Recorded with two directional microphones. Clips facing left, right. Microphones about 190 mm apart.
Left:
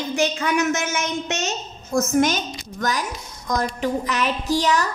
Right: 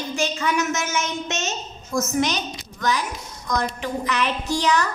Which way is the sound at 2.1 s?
50° left (ahead or behind).